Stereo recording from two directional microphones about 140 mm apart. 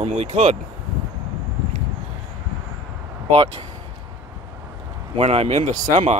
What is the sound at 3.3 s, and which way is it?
Speech, 45° right (ahead or behind).